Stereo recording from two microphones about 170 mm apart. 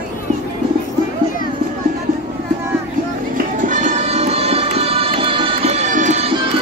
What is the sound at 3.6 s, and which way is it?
Music, 50° right (ahead or behind).